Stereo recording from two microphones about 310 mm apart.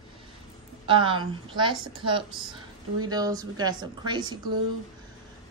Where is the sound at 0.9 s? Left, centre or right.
Centre.